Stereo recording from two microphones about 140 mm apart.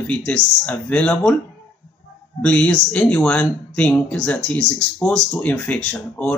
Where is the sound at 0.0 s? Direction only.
10° left (ahead or behind).